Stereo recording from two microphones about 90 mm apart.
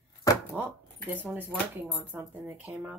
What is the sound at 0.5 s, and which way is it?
Speech, 20° right (ahead or behind).